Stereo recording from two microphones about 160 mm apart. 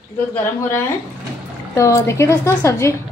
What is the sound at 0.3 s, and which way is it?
A woman's voice, 15° left (ahead or behind).